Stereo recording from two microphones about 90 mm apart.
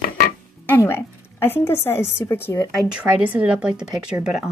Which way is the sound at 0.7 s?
25° left (ahead or behind).